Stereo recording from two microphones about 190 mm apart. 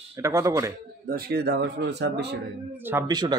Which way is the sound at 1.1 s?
55° right (ahead or behind).